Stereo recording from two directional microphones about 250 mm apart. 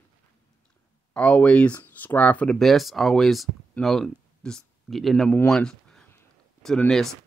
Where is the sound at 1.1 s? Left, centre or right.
Centre.